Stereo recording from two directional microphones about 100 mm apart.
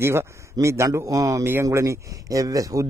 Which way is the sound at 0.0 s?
25° right (ahead or behind).